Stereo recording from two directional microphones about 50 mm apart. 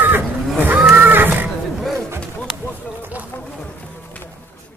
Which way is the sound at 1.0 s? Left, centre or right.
Right.